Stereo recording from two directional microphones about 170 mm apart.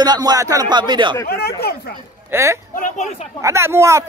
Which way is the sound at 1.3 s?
65° left (ahead or behind).